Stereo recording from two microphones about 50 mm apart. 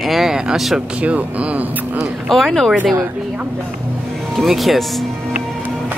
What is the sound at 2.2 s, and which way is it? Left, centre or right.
Speech, centre.